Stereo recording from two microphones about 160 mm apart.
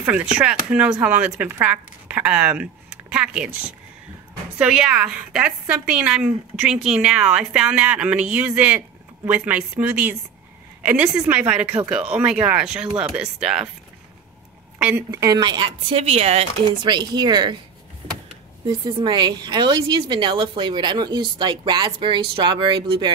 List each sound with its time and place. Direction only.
0.0 s a woman's voice: 10° right (ahead or behind)
4.6 s a woman's voice: 5° right (ahead or behind)
14.8 s a woman's voice: 10° right (ahead or behind)
18.9 s a woman's voice: 25° right (ahead or behind)